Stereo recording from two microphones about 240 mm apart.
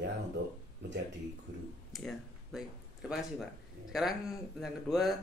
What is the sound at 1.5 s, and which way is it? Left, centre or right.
Speech, right.